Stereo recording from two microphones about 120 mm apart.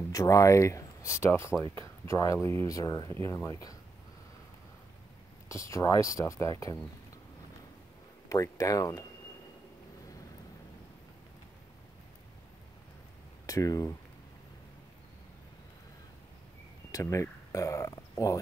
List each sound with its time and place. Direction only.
0.1 s speech: 30° left (ahead or behind)
5.5 s speech: 25° left (ahead or behind)
8.3 s speech: 25° left (ahead or behind)
13.5 s speech: 30° left (ahead or behind)
16.9 s speech: 25° left (ahead or behind)